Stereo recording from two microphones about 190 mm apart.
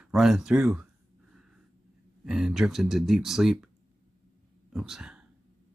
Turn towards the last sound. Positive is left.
turn(degrees=-5)  # may be behind; listen again after turning